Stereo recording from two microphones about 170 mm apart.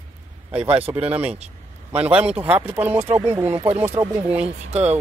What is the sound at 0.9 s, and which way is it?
Speech, 10° right (ahead or behind).